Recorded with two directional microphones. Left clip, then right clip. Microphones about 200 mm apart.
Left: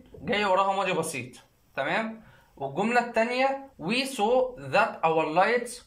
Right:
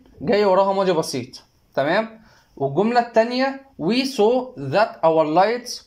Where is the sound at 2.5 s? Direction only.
30° right (ahead or behind).